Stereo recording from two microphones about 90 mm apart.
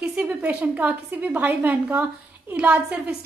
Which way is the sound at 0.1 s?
15° right (ahead or behind).